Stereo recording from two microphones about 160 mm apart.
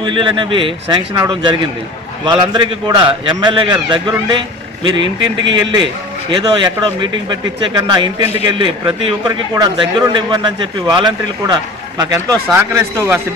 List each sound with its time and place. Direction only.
0.0 s a man's voice: 30° right (ahead or behind); by 13.2 s 15° right (ahead or behind)